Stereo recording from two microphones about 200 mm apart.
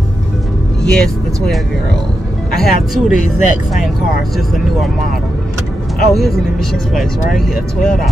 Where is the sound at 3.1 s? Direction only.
35° left (ahead or behind).